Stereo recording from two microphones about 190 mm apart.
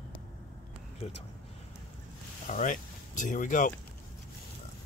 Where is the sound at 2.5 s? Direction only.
40° left (ahead or behind).